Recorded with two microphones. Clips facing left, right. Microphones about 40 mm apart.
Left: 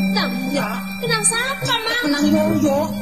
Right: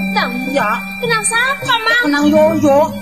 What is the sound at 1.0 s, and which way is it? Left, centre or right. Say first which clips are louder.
Speech: right 5 dB; right.